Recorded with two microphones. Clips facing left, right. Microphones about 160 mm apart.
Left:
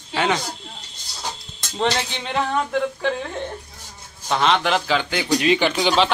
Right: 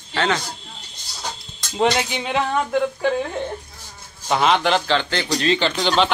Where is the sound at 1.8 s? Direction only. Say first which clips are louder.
Right 3 dB; 10° right (ahead or behind).